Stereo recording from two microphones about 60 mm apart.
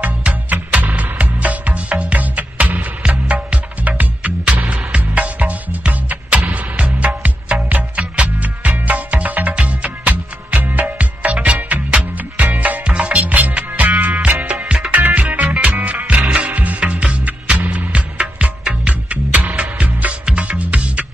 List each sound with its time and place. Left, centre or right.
0.0 s music: right
14.9 s music: right